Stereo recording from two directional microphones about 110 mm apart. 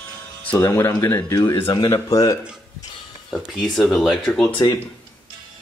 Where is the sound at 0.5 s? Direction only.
20° left (ahead or behind).